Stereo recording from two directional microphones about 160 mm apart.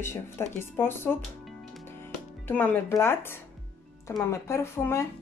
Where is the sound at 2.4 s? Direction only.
10° left (ahead or behind).